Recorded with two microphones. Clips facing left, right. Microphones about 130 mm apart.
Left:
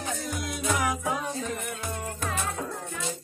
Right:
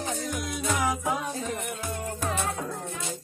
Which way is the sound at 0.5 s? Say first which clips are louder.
Left 1 dB; centre (ahead or behind).